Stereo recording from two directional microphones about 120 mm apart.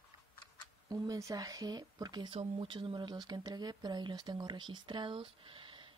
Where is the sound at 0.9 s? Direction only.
30° right (ahead or behind).